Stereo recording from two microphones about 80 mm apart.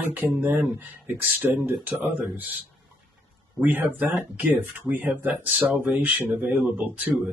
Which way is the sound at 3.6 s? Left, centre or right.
Right.